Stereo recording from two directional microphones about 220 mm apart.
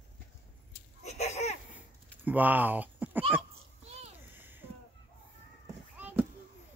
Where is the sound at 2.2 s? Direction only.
10° right (ahead or behind).